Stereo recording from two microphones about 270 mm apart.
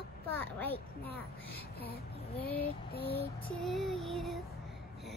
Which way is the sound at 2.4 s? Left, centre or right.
Left.